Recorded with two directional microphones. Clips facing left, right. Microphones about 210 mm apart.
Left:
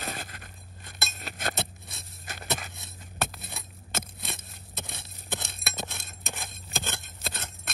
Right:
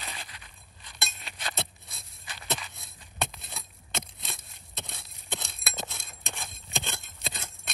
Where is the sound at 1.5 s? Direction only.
Centre (ahead or behind).